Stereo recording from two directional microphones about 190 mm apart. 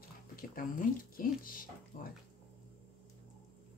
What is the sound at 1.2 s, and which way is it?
Speech, 50° left (ahead or behind).